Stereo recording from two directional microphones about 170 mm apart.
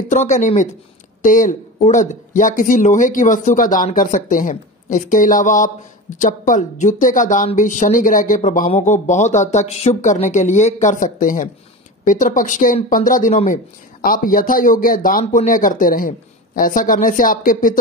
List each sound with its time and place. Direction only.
0.1 s speech: 45° left (ahead or behind)